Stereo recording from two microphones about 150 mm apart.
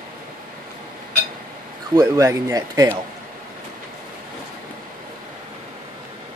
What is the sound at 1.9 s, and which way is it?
Speech, 25° right (ahead or behind).